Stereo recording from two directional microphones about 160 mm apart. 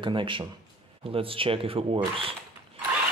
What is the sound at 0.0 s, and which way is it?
Speech, 30° right (ahead or behind).